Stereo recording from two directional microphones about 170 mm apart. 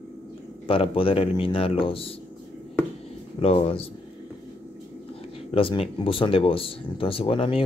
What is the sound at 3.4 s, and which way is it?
Speech, 35° left (ahead or behind).